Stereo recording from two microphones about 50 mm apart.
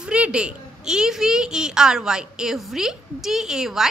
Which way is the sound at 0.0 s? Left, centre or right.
Centre.